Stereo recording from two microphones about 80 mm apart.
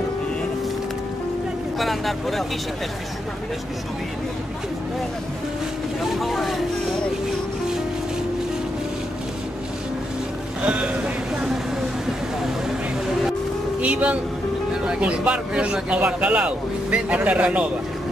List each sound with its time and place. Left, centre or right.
1.8 s speech: centre
6.1 s speech: centre
10.6 s boat: centre
13.7 s speech: centre